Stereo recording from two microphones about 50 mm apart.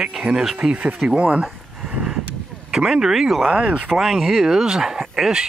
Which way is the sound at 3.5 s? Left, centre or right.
Right.